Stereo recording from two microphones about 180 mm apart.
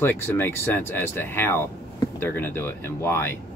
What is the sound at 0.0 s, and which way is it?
Speech, 10° left (ahead or behind).